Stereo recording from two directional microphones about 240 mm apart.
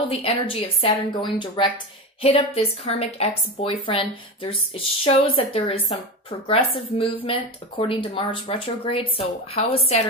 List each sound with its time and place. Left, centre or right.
0.1 s speech: left